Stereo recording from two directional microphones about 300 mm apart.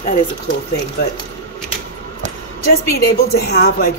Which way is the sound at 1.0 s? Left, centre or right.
Left.